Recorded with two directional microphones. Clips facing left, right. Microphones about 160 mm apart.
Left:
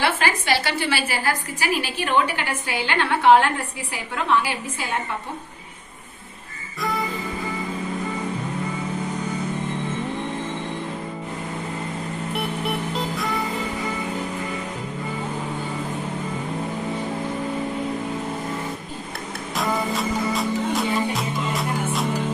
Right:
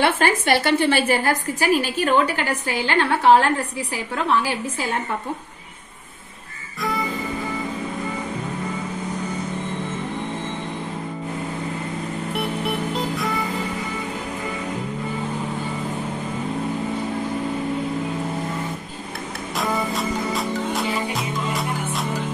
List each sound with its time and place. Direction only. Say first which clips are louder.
0.0 s a woman's voice: right 4 dB; 55° right (ahead or behind)
12.4 s music: right 2 dB; centre (ahead or behind)
19.5 s music: even; centre (ahead or behind)